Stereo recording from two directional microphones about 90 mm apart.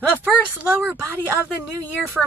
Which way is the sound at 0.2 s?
20° right (ahead or behind).